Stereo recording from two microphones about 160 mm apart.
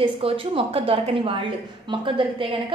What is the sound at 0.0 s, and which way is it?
A woman's voice, 35° right (ahead or behind).